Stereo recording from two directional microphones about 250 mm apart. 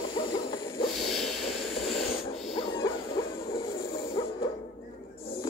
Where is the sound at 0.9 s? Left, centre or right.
Centre.